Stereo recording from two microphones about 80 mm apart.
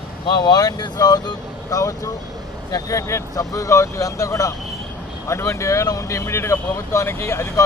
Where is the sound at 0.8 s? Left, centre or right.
Left.